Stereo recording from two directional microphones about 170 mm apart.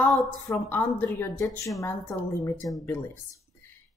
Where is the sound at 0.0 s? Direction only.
Centre (ahead or behind).